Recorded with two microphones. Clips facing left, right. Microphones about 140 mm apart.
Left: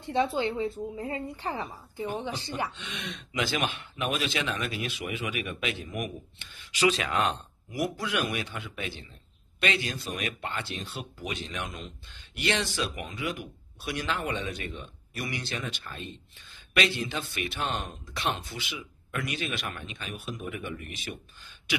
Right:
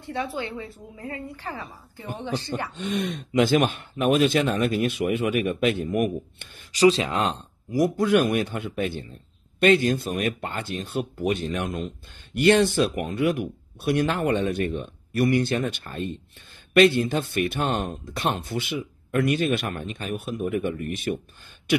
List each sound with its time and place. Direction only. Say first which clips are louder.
0.0 s speech: left 3 dB; 20° left (ahead or behind)
2.7 s speech: right 12 dB; 45° right (ahead or behind)
6.8 s speech: right 6 dB; 30° right (ahead or behind)
7.9 s speech: right 11 dB; 50° right (ahead or behind)